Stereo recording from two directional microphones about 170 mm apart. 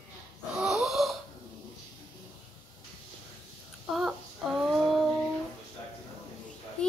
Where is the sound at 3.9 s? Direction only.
Centre (ahead or behind).